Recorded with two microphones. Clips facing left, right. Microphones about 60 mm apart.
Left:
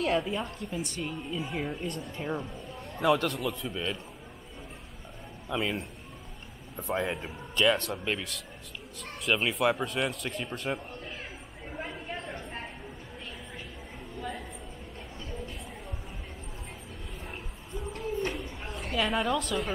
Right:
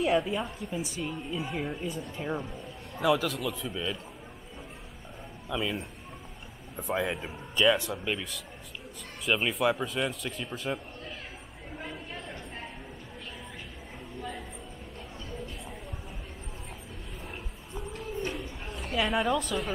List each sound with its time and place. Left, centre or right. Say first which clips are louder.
0.0 s a woman's voice: right 2 dB; centre
5.5 s a woman's voice: left 1 dB; centre
18.9 s speech: right 1 dB; centre